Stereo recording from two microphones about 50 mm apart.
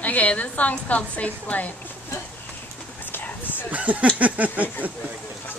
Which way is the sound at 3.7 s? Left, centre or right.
Right.